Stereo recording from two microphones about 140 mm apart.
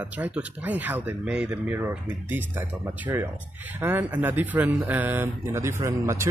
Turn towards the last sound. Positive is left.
turn(degrees=-20)  # may be behind; listen again after turning